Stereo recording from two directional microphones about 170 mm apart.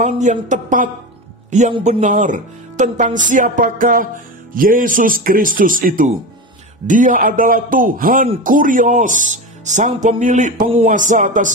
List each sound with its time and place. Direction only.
0.0 s a man's voice: 45° right (ahead or behind)